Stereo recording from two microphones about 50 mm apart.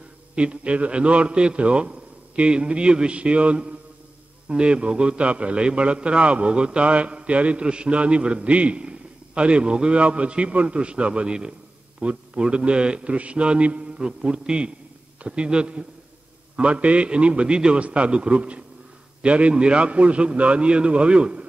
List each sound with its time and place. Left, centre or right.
0.4 s a man's voice: right